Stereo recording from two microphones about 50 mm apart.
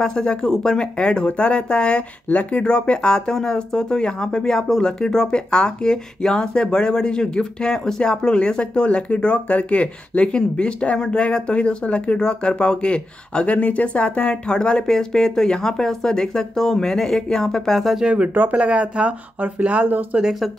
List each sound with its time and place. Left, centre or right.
0.0 s speech: centre
17.9 s speech: centre
18.3 s speech: right
20.2 s speech: centre